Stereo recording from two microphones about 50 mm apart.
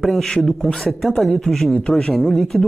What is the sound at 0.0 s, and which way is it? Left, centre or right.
Speech, centre.